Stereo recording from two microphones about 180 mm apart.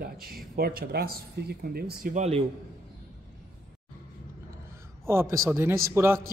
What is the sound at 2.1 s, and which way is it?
Speech, 35° right (ahead or behind).